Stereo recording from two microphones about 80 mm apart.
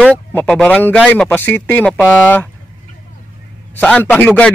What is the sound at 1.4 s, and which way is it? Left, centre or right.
Speech, left.